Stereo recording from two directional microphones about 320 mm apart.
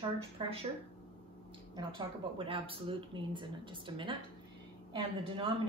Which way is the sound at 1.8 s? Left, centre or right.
Centre.